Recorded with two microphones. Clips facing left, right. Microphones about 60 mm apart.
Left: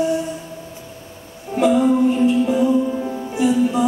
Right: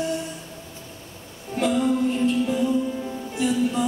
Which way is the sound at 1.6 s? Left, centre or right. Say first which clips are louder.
Left 7 dB; centre.